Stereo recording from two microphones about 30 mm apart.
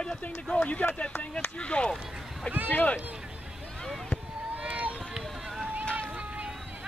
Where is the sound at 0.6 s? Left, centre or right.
Left.